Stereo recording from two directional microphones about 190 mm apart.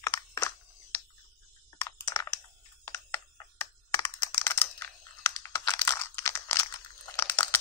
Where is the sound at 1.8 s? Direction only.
15° left (ahead or behind).